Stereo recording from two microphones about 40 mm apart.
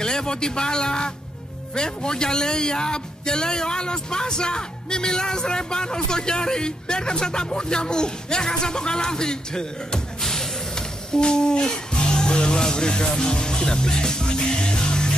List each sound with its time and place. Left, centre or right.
0.0 s a man's voice: centre